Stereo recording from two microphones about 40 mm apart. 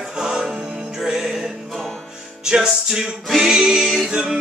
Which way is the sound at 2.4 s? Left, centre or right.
Centre.